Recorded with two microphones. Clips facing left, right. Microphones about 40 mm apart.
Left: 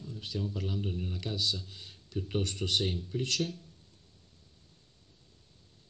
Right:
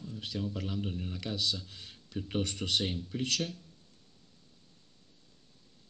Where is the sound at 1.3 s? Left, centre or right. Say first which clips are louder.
Even; right.